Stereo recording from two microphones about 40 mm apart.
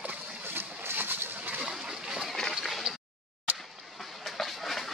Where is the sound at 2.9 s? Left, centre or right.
Centre.